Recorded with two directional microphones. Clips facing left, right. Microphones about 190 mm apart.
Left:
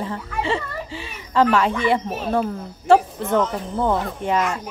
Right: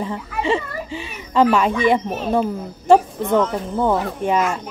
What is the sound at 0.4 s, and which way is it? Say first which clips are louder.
A child's voice: right 3 dB; 15° right (ahead or behind).